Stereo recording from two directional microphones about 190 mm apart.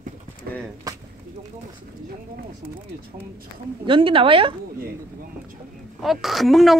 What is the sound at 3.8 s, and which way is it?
Speech, 25° right (ahead or behind).